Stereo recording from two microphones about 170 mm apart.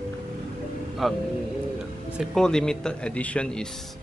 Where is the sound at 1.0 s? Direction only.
Centre (ahead or behind).